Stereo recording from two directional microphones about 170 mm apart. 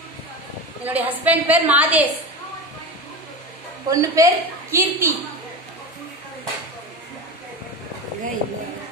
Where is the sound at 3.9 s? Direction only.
20° right (ahead or behind).